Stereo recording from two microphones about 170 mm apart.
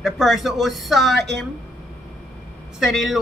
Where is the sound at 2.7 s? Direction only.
Centre (ahead or behind).